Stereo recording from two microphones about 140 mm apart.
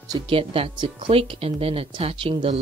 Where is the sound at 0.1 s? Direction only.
40° right (ahead or behind).